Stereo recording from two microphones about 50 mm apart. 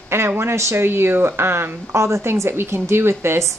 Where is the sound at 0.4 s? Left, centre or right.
Right.